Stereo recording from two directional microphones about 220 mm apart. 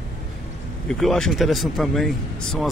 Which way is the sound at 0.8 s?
Centre (ahead or behind).